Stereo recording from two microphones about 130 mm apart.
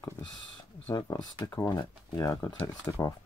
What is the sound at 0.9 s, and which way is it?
Speech, 25° left (ahead or behind).